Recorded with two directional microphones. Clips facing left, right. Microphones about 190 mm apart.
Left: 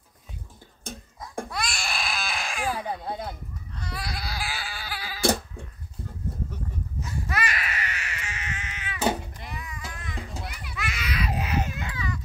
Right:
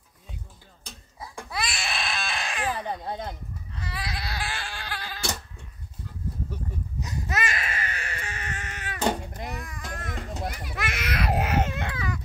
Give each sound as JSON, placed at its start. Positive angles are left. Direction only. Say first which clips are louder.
{"t": 1.5, "sound": "baby cry", "louder": "right 5 dB", "side_deg": -5}
{"t": 5.2, "sound": "a sound", "louder": "left 9 dB", "side_deg": 55}
{"t": 7.0, "sound": "baby cry", "louder": "even", "side_deg": -20}
{"t": 9.3, "sound": "a sound", "louder": "right 4 dB", "side_deg": -45}
{"t": 9.9, "sound": "music", "louder": "right 6 dB", "side_deg": -50}
{"t": 10.4, "sound": "baby cry", "louder": "right 4 dB", "side_deg": -45}